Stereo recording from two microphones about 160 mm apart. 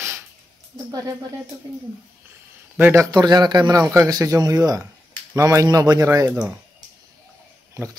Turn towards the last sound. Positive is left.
turn(degrees=-20)  # may be behind; listen again after turning